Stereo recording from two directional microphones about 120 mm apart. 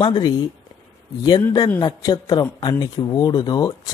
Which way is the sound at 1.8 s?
30° left (ahead or behind).